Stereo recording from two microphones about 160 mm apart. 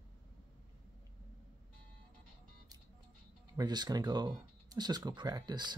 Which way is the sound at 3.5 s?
25° right (ahead or behind).